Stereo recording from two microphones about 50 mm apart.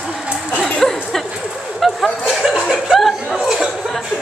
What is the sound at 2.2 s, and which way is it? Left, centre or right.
Chuckle, centre.